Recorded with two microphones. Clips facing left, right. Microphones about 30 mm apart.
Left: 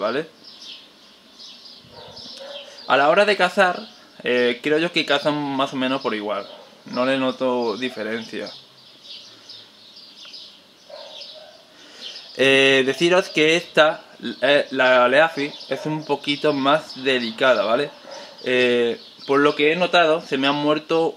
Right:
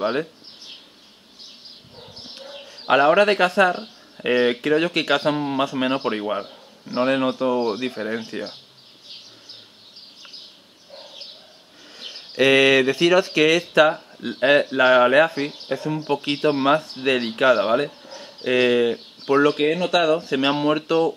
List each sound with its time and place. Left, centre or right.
0.0 s speech: centre
2.8 s speech: centre
10.9 s a sound: centre
12.0 s bird: centre
12.4 s speech: centre
15.9 s speech: centre
19.6 s speech: centre
20.2 s speech: centre